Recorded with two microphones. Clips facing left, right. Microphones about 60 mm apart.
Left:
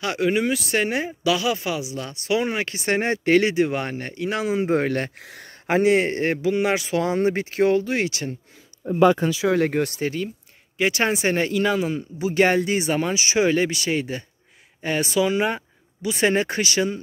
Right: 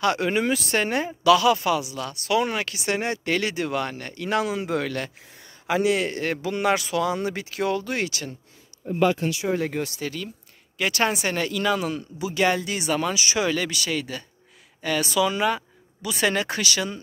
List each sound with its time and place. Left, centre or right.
0.0 s speech: centre; by 2.7 s left
2.7 s speech: left
4.1 s speech: centre
4.5 s speech: left
5.1 s speech: left
5.7 s speech: left
6.3 s speech: centre
7.0 s speech: left
7.8 s speech: left
9.5 s speech: left
10.0 s speech: left
12.2 s speech: left